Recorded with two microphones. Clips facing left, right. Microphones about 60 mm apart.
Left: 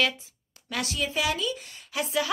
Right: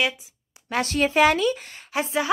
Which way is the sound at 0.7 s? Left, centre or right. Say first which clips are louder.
Right 8 dB; right.